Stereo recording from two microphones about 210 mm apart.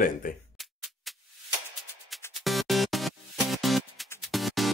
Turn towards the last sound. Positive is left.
turn(degrees=0)  # may be behind; listen again after turning